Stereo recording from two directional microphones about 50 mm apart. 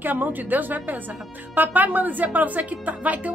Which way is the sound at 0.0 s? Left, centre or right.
Right.